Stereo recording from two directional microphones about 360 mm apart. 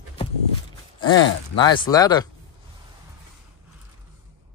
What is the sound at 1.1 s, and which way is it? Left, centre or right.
Speech, left.